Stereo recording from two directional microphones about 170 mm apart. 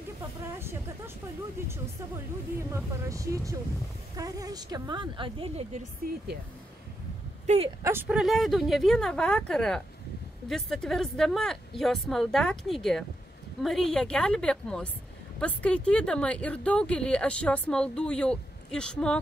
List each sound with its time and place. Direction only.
0.6 s a woman's voice: 15° right (ahead or behind); by 5.9 s 40° right (ahead or behind)
7.4 s speech: 35° right (ahead or behind)
7.8 s speech: 15° right (ahead or behind)
8.2 s speech: centre (ahead or behind)